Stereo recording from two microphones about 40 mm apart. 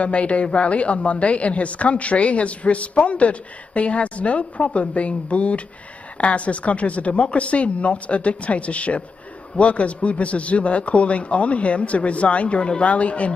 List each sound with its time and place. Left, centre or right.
0.0 s a woman's voice: left